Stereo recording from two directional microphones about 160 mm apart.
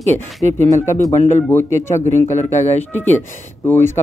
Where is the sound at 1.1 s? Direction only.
40° left (ahead or behind).